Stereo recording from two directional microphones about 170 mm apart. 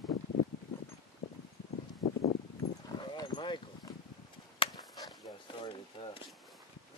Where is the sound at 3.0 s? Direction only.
25° left (ahead or behind).